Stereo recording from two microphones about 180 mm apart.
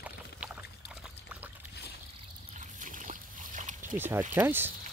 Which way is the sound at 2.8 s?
45° right (ahead or behind).